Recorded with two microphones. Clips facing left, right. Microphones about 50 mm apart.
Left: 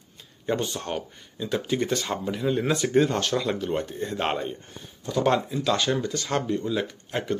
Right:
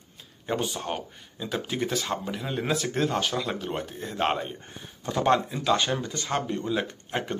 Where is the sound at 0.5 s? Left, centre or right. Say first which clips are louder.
Left 2 dB; centre.